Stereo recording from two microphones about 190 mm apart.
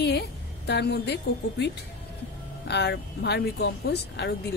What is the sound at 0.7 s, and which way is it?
Speech, 60° left (ahead or behind).